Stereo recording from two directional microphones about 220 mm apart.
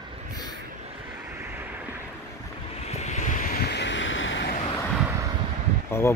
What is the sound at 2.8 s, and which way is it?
Vehicle, 30° left (ahead or behind).